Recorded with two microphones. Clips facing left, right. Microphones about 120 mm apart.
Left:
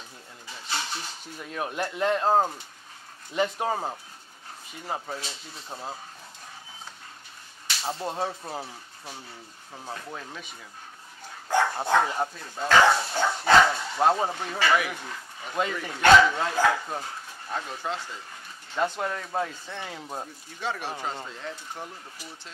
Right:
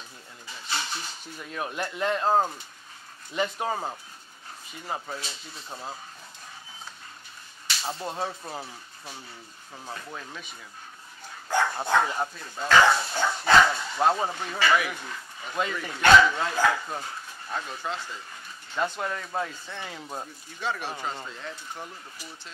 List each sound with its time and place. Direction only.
0.5 s a sound: 35° left (ahead or behind)
1.8 s speech: 45° left (ahead or behind)
3.3 s speech: 45° left (ahead or behind)
5.2 s speech: 60° left (ahead or behind)
7.8 s speech: 20° left (ahead or behind)
8.2 s speech: 35° left (ahead or behind)
9.8 s speech: 35° left (ahead or behind)
20.0 s speech: 20° left (ahead or behind)
20.6 s speech: 40° left (ahead or behind)